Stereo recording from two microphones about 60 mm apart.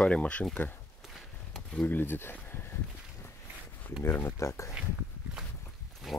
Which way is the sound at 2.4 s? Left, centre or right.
Left.